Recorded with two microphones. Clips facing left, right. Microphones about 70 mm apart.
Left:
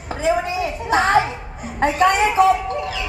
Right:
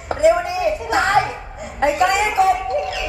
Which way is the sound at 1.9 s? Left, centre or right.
Left.